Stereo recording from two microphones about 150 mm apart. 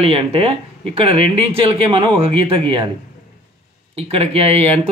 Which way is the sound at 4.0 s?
40° right (ahead or behind).